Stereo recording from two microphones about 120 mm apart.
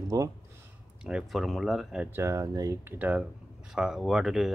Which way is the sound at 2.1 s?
25° right (ahead or behind).